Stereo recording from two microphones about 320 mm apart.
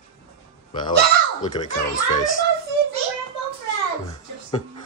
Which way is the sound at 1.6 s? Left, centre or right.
Centre.